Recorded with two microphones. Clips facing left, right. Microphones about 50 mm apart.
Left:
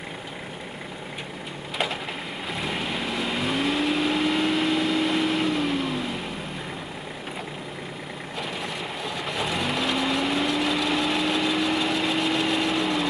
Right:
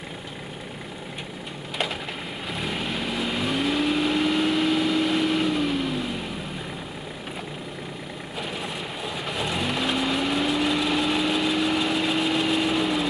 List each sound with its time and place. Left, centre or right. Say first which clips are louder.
2.5 s vehicle: even; centre
9.0 s vehicle: even; centre